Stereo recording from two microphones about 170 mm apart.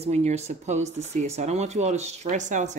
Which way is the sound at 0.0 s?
40° right (ahead or behind).